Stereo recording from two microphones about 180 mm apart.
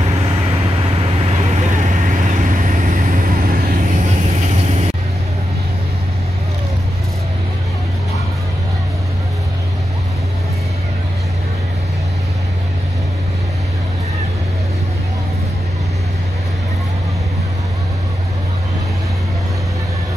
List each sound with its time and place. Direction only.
0.8 s vehicle: 35° right (ahead or behind); by 3.3 s 50° right (ahead or behind)